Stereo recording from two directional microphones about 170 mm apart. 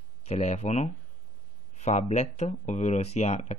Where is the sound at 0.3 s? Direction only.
40° left (ahead or behind).